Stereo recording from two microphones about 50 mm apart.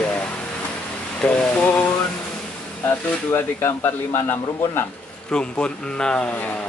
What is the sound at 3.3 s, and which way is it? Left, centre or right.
A man's voice, left.